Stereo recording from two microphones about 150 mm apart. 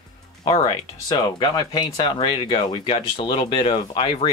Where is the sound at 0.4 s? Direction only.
30° left (ahead or behind).